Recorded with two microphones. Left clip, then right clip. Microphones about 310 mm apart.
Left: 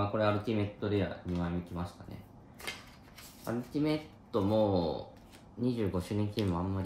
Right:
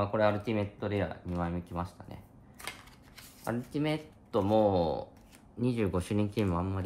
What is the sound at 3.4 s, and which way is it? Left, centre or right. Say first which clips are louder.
Speech: even; right.